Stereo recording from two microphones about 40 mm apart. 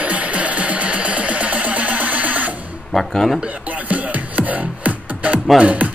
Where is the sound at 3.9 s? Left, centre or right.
Right.